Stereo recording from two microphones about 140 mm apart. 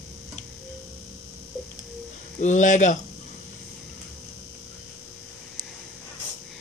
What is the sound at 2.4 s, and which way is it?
Speech, 60° left (ahead or behind).